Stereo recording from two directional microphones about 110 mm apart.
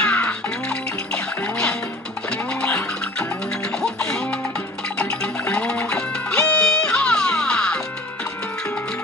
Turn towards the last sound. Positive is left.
turn(degrees=10)  # may be behind; listen again after turning